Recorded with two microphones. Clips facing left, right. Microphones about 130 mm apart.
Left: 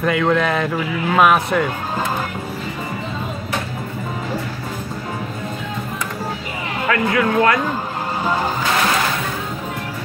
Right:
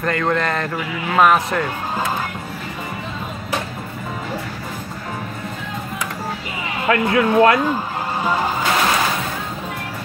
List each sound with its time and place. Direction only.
0.0 s speech: 5° left (ahead or behind)
6.9 s speech: 25° right (ahead or behind)